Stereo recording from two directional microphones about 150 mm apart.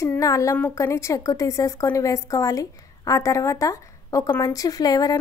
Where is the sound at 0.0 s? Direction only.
20° left (ahead or behind).